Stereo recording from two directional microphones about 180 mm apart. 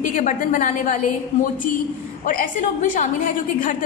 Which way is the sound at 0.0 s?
45° left (ahead or behind).